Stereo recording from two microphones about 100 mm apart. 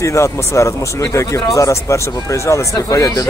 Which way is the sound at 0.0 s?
30° left (ahead or behind).